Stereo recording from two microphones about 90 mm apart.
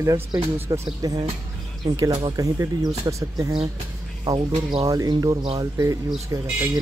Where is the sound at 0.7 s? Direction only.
40° right (ahead or behind).